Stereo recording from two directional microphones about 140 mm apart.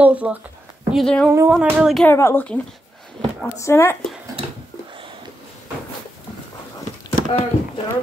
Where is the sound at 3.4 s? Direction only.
20° left (ahead or behind).